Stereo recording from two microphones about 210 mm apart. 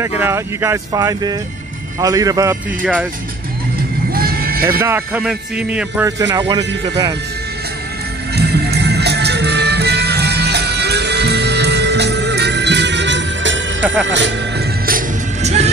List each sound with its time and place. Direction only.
0.0 s a man's voice: 10° right (ahead or behind)
4.1 s vehicle: 45° right (ahead or behind)
4.6 s a man's voice: 10° right (ahead or behind)
8.4 s music: 50° right (ahead or behind); by 15.7 s 30° right (ahead or behind)